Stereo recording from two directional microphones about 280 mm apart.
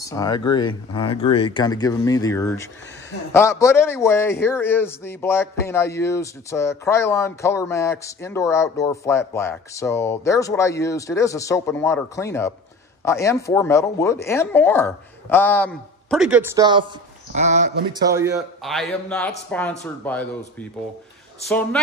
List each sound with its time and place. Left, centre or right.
0.0 s a man's voice: centre
17.3 s a man's voice: right
18.0 s a man's voice: centre
18.6 s a man's voice: centre